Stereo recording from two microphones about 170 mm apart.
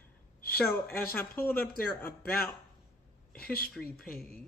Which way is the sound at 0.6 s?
15° left (ahead or behind).